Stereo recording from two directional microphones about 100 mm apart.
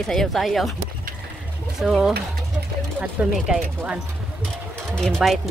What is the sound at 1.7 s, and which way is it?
Speech, 5° right (ahead or behind).